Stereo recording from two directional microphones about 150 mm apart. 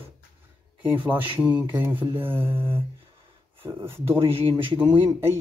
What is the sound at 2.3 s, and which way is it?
Speech, 35° right (ahead or behind).